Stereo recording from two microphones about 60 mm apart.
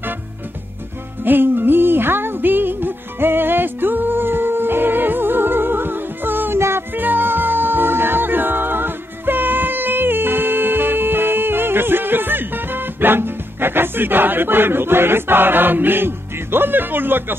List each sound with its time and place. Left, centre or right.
1.2 s music: right